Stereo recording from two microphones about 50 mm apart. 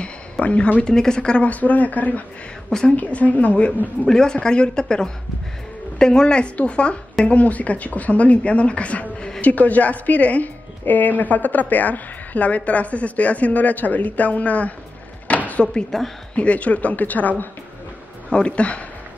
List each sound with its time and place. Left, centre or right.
0.0 s a sound: left
0.8 s speech: centre
1.4 s a woman's voice: left
4.1 s a woman's voice: centre; by 14.7 s left
15.2 s a sound: left
15.9 s speech: centre
16.3 s a woman's voice: left
18.3 s speech: left